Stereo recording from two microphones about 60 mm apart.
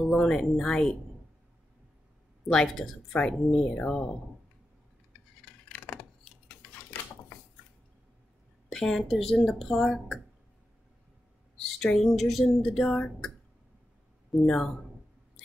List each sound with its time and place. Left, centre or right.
0.0 s speech: centre
2.4 s speech: centre
5.4 s a sound: centre
8.6 s speech: centre
12.0 s speech: centre
14.3 s speech: centre